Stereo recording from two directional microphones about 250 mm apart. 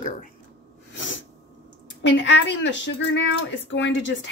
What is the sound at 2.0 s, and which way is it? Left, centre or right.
Speech, left.